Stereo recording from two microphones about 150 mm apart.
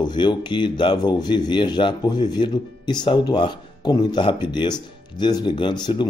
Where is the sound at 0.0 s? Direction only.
30° left (ahead or behind).